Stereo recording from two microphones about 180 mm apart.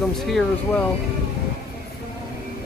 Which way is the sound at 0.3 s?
Centre (ahead or behind).